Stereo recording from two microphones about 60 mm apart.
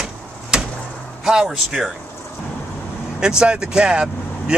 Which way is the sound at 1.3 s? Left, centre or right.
Centre.